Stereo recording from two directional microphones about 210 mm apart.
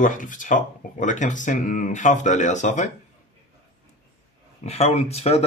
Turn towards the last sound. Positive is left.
turn(degrees=30)  # may be behind; listen again after turning